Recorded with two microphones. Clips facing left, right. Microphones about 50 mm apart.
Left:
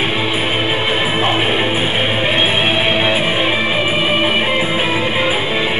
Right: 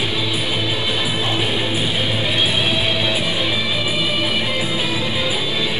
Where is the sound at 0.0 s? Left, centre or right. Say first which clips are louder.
Left 5 dB; left.